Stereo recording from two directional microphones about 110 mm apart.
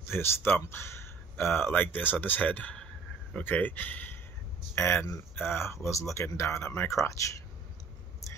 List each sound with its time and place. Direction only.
0.1 s speech: 20° left (ahead or behind)